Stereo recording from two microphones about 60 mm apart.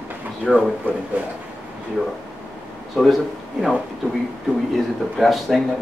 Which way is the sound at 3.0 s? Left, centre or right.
Centre.